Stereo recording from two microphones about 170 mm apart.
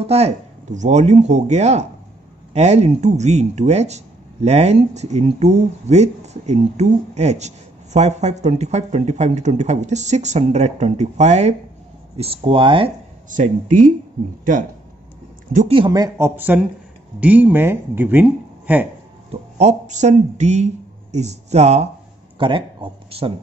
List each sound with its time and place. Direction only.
0.0 s speech: 40° right (ahead or behind)
13.3 s speech: 50° right (ahead or behind)
15.7 s speech: 25° right (ahead or behind)
19.6 s speech: 45° right (ahead or behind)
22.4 s speech: 30° right (ahead or behind)